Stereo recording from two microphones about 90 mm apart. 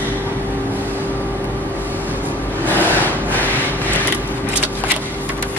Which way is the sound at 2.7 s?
20° left (ahead or behind).